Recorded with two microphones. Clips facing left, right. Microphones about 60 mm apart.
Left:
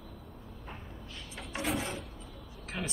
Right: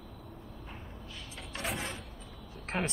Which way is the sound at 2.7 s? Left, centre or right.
Right.